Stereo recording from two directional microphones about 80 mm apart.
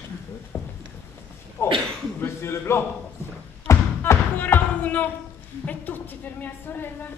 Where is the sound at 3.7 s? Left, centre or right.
Left.